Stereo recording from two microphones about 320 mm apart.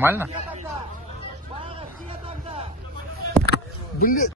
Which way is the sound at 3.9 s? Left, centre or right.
Left.